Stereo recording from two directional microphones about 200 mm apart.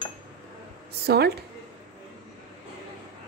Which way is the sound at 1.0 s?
55° right (ahead or behind).